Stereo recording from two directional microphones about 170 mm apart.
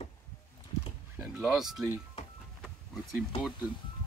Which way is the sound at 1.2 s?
5° right (ahead or behind).